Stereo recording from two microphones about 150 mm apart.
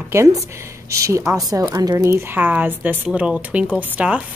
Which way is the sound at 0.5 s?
20° right (ahead or behind).